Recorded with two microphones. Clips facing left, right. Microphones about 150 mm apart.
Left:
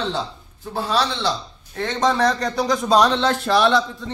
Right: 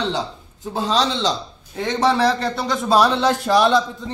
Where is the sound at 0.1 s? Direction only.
20° right (ahead or behind).